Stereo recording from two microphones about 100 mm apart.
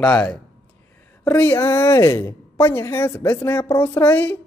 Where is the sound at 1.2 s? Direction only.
20° left (ahead or behind).